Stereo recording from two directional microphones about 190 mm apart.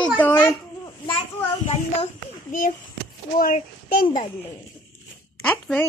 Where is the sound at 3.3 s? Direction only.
45° left (ahead or behind).